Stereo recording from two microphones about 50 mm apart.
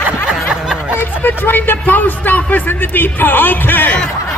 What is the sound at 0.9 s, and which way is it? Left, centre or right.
Speech, left.